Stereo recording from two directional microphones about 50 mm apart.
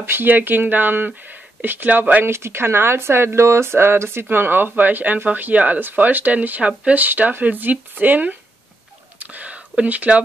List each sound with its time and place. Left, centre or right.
0.0 s speech: right
2.2 s speech: right